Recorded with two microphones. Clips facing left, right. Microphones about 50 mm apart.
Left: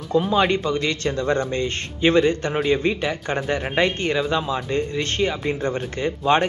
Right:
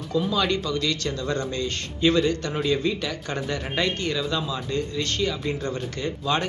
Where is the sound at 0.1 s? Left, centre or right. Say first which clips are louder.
Left 5 dB; left.